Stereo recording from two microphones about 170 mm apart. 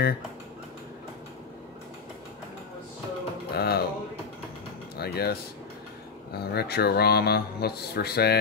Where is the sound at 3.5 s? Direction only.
70° left (ahead or behind).